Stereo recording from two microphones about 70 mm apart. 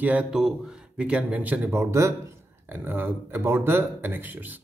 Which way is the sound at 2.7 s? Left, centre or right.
Right.